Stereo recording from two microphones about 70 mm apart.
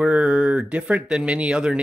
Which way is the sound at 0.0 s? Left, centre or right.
Centre.